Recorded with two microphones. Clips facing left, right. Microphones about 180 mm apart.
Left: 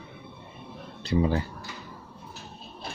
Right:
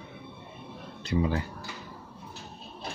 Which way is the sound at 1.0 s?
30° left (ahead or behind).